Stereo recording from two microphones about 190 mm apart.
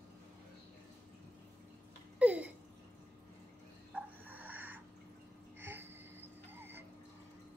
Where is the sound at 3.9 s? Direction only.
10° right (ahead or behind).